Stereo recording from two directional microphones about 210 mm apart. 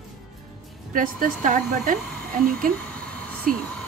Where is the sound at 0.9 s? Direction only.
40° right (ahead or behind).